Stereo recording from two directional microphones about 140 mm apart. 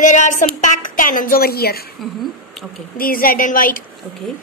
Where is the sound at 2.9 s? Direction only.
90° left.